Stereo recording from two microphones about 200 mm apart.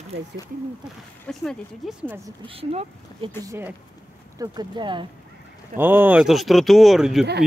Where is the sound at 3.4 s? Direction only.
15° right (ahead or behind).